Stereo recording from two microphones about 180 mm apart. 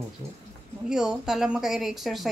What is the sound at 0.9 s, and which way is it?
Speech, 5° right (ahead or behind).